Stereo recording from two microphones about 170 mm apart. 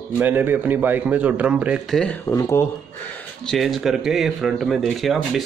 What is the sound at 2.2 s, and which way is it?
Speech, 15° left (ahead or behind).